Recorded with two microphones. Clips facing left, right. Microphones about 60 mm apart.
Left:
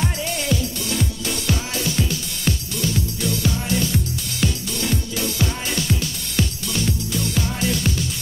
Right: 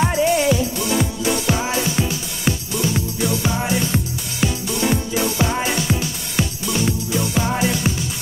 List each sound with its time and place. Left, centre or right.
0.1 s music: centre